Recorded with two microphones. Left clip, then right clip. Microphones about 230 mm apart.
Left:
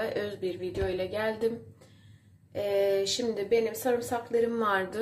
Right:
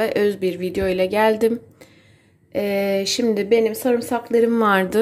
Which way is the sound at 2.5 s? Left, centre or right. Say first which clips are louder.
Right 6 dB; right.